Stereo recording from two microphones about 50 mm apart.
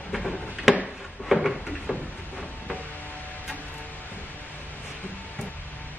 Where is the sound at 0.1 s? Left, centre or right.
Centre.